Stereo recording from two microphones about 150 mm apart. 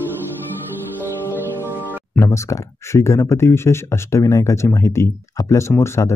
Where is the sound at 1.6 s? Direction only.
15° right (ahead or behind).